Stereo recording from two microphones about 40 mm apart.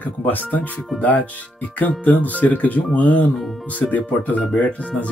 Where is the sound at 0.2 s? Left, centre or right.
Left.